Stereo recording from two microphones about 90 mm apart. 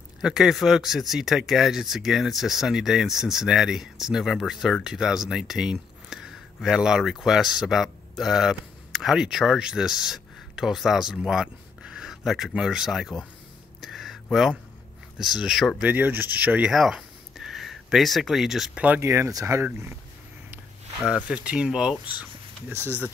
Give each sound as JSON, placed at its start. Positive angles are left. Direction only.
{"t": 0.2, "sound": "speech", "side_deg": -5}
{"t": 13.7, "sound": "a sound", "side_deg": 0}
{"t": 15.1, "sound": "speech", "side_deg": -5}
{"t": 15.8, "sound": "speech", "side_deg": -20}
{"t": 16.7, "sound": "a sound", "side_deg": -5}
{"t": 18.9, "sound": "speech", "side_deg": -30}
{"t": 21.1, "sound": "speech", "side_deg": -10}
{"t": 22.8, "sound": "speech", "side_deg": 25}